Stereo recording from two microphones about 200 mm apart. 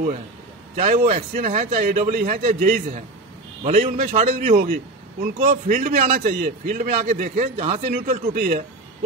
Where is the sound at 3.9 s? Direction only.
45° right (ahead or behind).